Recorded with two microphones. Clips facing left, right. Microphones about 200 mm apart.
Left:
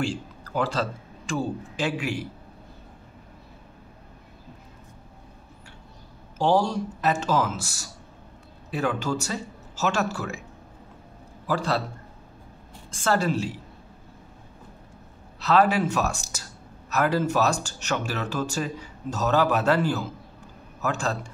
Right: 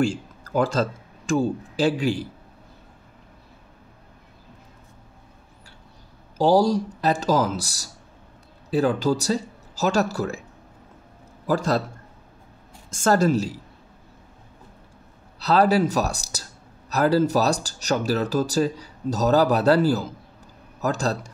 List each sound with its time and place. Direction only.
0.0 s speech: 45° right (ahead or behind)
6.3 s speech: 35° right (ahead or behind)
11.4 s a woman's voice: 45° right (ahead or behind)
12.9 s a woman's voice: 45° right (ahead or behind)
15.3 s speech: 35° right (ahead or behind)